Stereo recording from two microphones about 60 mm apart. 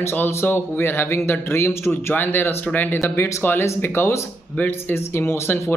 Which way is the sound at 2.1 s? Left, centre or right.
Left.